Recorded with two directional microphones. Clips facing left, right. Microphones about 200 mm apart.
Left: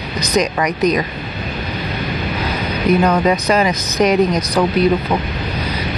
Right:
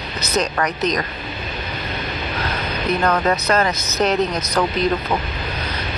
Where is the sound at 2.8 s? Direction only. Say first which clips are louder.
Left 5 dB; 10° left (ahead or behind).